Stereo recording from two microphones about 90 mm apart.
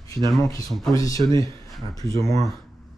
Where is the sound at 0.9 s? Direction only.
40° left (ahead or behind).